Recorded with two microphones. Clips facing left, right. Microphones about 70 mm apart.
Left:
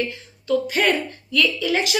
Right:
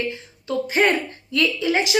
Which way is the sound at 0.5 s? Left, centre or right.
Right.